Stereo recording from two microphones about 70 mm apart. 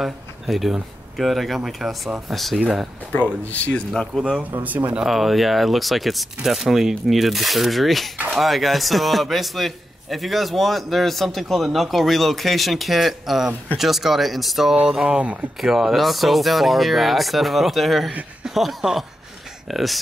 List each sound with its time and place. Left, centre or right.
0.0 s a man's voice: centre
3.6 s speech: centre
4.4 s speech: right
5.0 s a man's voice: centre